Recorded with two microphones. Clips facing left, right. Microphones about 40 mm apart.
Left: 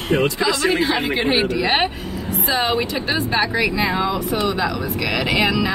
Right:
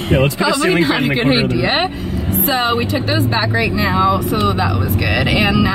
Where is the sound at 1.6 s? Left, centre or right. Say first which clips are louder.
Right 2 dB; centre.